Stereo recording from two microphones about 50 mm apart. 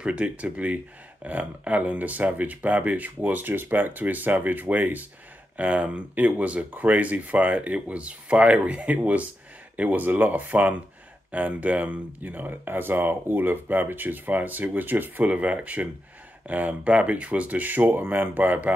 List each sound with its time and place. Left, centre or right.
0.0 s speech: right